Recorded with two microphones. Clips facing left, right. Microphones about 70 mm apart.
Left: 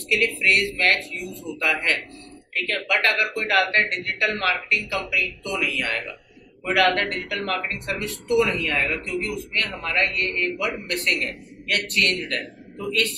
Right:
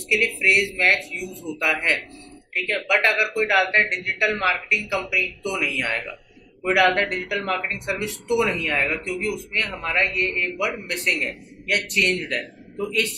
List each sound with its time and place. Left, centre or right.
0.1 s speech: centre